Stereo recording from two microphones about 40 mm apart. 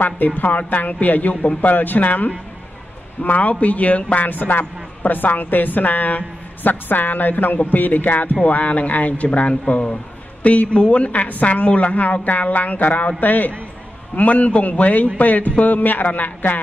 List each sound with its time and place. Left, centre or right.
0.4 s a man's voice: left
1.3 s a man's voice: left
1.6 s a man's voice: left